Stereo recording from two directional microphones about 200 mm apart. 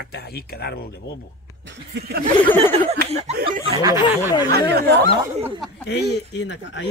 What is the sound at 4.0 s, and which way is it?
Speech, 20° left (ahead or behind).